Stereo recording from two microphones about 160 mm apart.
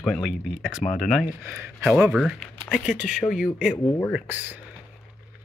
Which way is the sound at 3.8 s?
15° left (ahead or behind).